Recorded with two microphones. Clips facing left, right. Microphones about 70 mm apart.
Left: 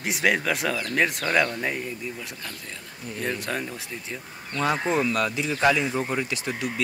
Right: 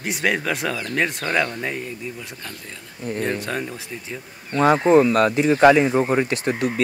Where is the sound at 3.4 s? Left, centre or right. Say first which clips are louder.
Right 3 dB; centre.